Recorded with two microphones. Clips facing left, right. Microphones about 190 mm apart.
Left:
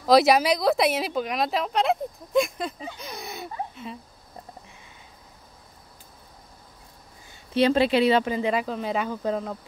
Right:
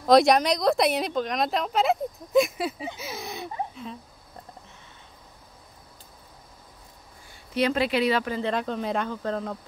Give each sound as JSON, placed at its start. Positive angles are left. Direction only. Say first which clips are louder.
{"t": 0.0, "sound": "speech", "louder": "even", "side_deg": 5}
{"t": 7.5, "sound": "speech", "louder": "left 4 dB", "side_deg": 30}
{"t": 8.4, "sound": "speech", "louder": "left 2 dB", "side_deg": 10}